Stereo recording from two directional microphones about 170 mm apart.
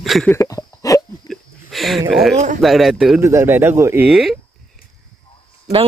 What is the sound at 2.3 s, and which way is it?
Speech, 45° right (ahead or behind).